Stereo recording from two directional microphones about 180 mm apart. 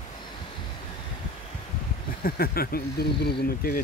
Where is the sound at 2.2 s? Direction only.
55° left (ahead or behind).